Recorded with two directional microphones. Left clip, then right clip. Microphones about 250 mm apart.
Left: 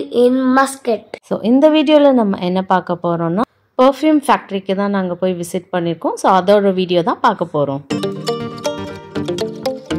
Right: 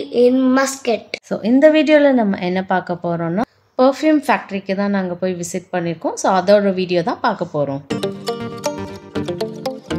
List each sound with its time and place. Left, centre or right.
0.1 s a woman's voice: centre
7.9 s music: centre